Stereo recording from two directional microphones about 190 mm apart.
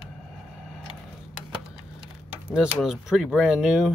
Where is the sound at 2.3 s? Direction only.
5° right (ahead or behind).